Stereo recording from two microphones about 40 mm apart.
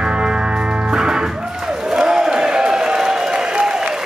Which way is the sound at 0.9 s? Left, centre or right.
Centre.